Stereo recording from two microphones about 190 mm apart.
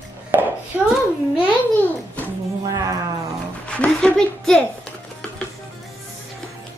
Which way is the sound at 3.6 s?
5° left (ahead or behind).